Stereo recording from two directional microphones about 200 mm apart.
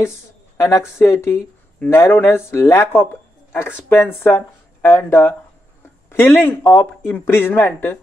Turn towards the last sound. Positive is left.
turn(degrees=10)  # may be behind; listen again after turning